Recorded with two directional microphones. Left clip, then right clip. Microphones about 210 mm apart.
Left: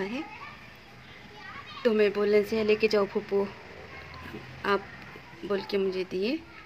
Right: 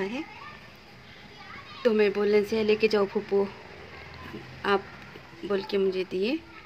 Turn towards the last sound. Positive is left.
turn(degrees=0)  # may be behind; listen again after turning